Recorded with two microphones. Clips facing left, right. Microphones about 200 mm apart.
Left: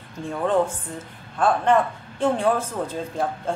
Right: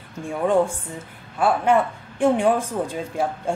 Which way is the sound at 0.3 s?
10° right (ahead or behind).